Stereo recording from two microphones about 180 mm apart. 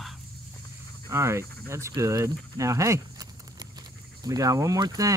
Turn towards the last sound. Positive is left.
turn(degrees=-20)  # may be behind; listen again after turning